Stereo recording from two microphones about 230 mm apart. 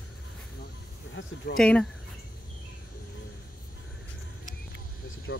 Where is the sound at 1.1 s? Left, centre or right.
Left.